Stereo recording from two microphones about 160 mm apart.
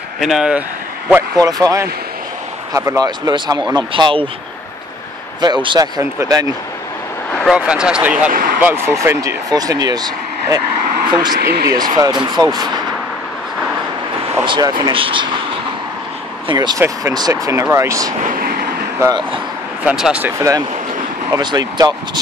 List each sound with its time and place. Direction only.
0.2 s speech: 5° right (ahead or behind)
1.4 s speech: 20° right (ahead or behind)
5.4 s speech: 30° right (ahead or behind)
7.5 s speech: 5° right (ahead or behind)
8.3 s speech: 65° right (ahead or behind)
8.5 s speech: 10° right (ahead or behind)
11.3 s speech: 80° right
11.9 s speech: 25° right (ahead or behind)
14.4 s speech: 30° right (ahead or behind)
16.4 s speech: 25° right (ahead or behind)
18.2 s speech: 60° right (ahead or behind)
18.9 s speech: 20° right (ahead or behind)
19.8 s speech: 5° right (ahead or behind); by 22.2 s 25° right (ahead or behind)